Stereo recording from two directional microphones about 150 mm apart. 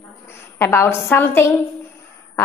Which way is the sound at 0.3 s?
15° left (ahead or behind).